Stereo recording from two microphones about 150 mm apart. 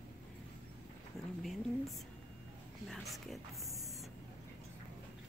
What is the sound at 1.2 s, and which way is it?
Speech, 5° right (ahead or behind).